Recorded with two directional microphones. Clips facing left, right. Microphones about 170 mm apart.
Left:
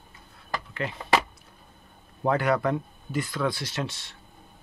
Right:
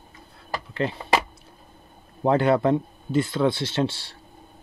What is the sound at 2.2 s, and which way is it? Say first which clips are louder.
Speech: right 4 dB; 25° right (ahead or behind).